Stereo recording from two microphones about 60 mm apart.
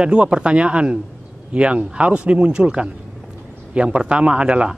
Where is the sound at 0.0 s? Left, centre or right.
Centre.